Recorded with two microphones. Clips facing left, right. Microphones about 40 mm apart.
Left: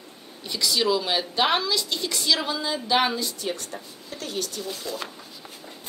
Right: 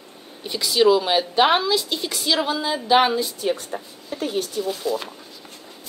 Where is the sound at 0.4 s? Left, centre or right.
Centre.